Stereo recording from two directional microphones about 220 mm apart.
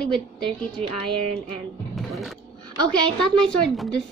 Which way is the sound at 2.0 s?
Centre (ahead or behind).